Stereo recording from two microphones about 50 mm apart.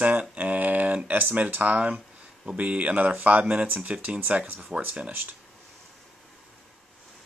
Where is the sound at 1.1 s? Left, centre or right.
Right.